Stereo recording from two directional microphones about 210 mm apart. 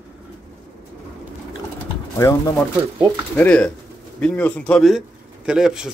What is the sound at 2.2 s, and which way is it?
A man's voice, 15° left (ahead or behind).